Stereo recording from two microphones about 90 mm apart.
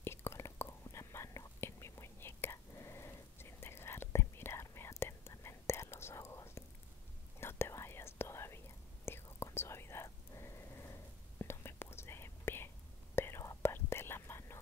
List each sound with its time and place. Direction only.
0.0 s whispering: 25° left (ahead or behind)